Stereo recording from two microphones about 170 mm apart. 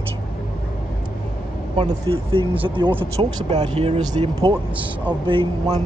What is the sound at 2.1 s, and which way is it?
Speech, 30° right (ahead or behind).